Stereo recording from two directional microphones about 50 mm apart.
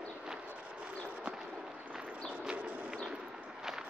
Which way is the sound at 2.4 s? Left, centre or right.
Centre.